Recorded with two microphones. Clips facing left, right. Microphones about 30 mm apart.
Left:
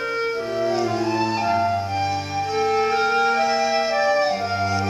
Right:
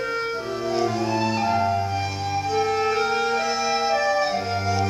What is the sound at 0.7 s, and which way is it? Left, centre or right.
Music, centre.